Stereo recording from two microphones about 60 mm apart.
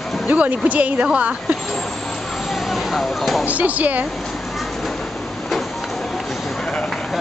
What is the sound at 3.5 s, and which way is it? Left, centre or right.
Speech, right.